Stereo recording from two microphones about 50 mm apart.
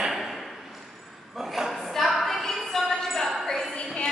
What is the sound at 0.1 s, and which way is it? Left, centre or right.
Ping, centre.